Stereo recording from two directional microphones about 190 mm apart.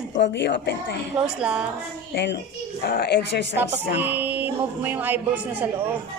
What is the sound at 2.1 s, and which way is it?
Speech, 65° left (ahead or behind).